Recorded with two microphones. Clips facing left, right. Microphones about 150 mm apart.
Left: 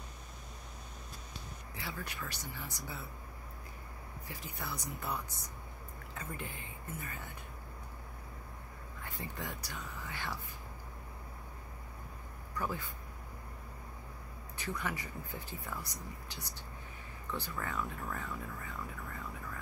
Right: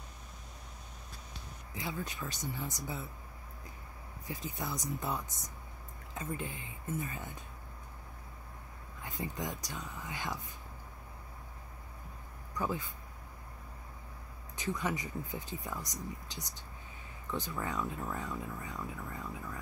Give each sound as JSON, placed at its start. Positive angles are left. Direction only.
{"t": 1.8, "sound": "speech", "side_deg": -20}
{"t": 4.3, "sound": "speech", "side_deg": -20}
{"t": 9.0, "sound": "speech", "side_deg": -20}
{"t": 12.5, "sound": "speech", "side_deg": -20}
{"t": 14.6, "sound": "speech", "side_deg": -20}